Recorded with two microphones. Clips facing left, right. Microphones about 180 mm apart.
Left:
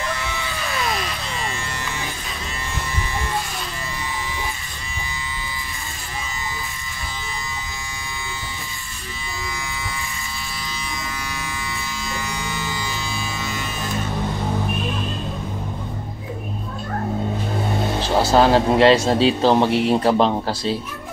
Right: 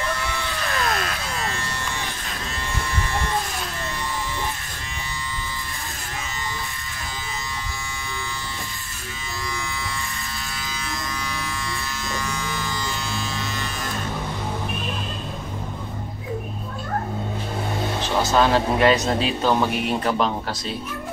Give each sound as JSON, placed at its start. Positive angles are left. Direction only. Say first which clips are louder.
{"t": 0.1, "sound": "a sound", "louder": "even", "side_deg": 5}
{"t": 12.1, "sound": "electric shaver", "louder": "right 1 dB", "side_deg": 10}
{"t": 18.0, "sound": "a man's voice", "louder": "left 4 dB", "side_deg": 35}